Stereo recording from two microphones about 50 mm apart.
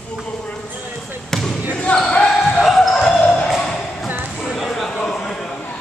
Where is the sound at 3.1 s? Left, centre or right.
Left.